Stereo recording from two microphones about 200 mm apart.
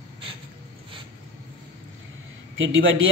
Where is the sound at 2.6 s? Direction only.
70° right (ahead or behind).